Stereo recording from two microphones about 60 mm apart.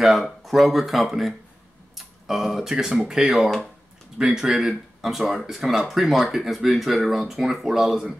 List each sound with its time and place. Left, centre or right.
0.0 s speech: centre